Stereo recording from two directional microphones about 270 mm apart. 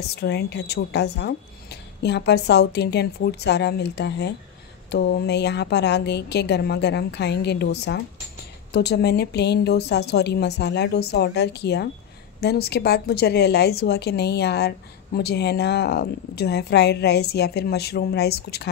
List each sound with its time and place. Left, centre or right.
0.1 s speech: left